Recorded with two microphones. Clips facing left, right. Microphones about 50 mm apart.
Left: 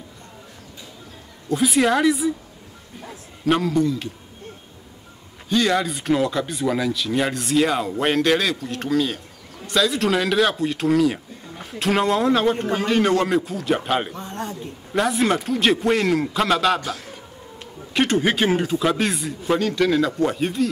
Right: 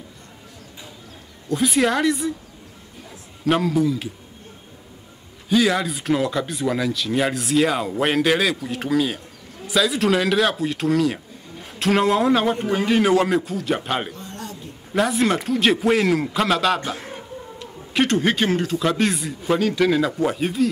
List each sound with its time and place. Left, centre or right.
1.5 s speech: centre
3.4 s speech: centre
5.5 s speech: centre
14.1 s a sound: left
15.0 s speech: centre
16.8 s a man's voice: right
17.9 s speech: centre